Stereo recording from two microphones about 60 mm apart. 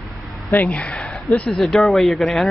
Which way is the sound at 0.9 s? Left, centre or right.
Centre.